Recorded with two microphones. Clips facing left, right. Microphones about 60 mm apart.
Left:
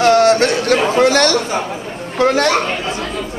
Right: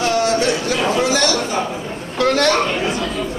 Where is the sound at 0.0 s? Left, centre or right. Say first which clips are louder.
Left 6 dB; left.